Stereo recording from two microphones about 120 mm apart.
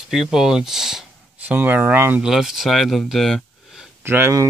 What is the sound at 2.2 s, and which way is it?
Speech, 5° right (ahead or behind).